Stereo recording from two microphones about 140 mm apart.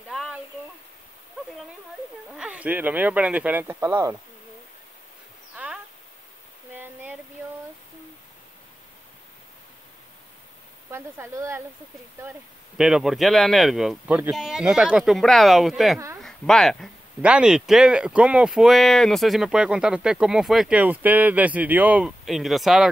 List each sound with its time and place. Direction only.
0.1 s a sound: centre (ahead or behind)
2.3 s speech: 5° right (ahead or behind)
5.6 s a sound: 10° right (ahead or behind)
6.8 s waterfall: 10° right (ahead or behind)
10.9 s speech: 20° right (ahead or behind)
12.2 s speech: 10° right (ahead or behind)